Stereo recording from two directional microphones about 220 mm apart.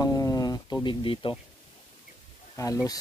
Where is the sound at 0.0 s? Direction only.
15° left (ahead or behind).